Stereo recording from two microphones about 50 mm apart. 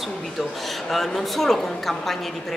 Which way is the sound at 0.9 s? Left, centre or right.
Centre.